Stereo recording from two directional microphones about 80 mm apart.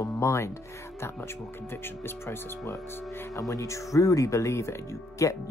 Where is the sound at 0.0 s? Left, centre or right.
Left.